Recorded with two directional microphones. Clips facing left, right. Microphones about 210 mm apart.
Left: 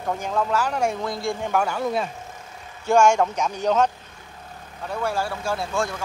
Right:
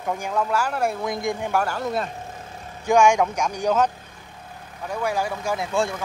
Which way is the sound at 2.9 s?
15° right (ahead or behind).